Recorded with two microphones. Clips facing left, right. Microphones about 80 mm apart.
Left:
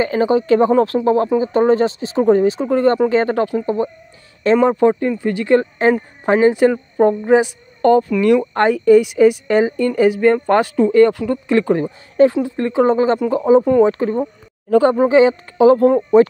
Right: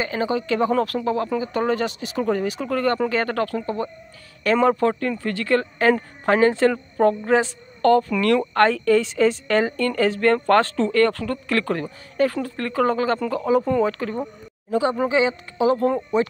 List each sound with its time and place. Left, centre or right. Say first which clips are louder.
0.0 s speech: left 8 dB; left
14.7 s speech: left 8 dB; left